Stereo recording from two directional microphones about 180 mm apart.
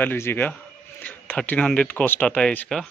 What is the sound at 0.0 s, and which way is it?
A man's voice, 10° left (ahead or behind).